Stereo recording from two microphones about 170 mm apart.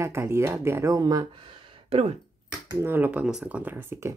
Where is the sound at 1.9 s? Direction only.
35° right (ahead or behind).